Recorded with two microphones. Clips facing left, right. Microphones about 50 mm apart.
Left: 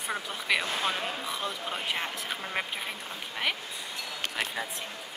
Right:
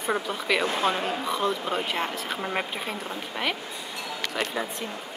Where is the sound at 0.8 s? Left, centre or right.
Centre.